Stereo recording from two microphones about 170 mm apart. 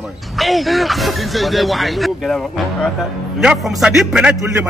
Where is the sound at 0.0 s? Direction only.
Centre (ahead or behind).